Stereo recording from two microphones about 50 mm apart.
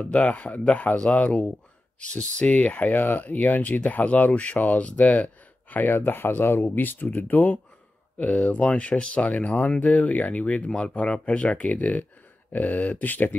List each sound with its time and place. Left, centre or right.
0.0 s speech: left
10.7 s speech: centre; by 13.4 s left